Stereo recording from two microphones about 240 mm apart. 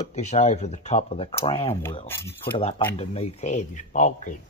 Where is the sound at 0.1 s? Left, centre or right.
Left; by 2.5 s centre.